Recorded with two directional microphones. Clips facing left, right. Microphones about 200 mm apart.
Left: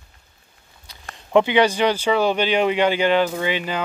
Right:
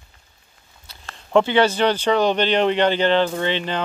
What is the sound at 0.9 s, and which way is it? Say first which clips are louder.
Speech: even; 15° left (ahead or behind).